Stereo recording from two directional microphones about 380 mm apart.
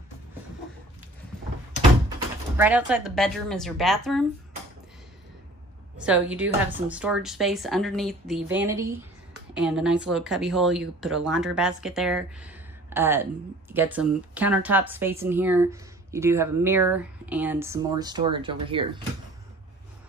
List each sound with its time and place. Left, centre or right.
2.5 s speech: centre
5.9 s speech: centre